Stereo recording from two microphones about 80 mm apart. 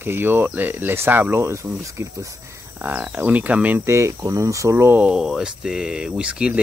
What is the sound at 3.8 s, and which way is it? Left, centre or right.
Speech, right.